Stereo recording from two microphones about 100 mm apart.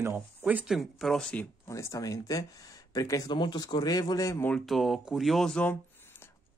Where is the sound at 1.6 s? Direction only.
30° left (ahead or behind).